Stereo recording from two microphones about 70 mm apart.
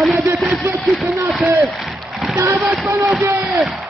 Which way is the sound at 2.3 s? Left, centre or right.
Right.